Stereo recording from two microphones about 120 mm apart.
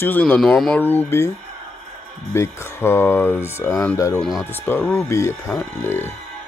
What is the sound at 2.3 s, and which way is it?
Speech, 20° left (ahead or behind).